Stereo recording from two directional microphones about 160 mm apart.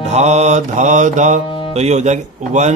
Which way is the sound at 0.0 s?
45° right (ahead or behind).